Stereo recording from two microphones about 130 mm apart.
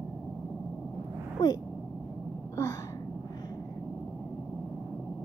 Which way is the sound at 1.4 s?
30° left (ahead or behind).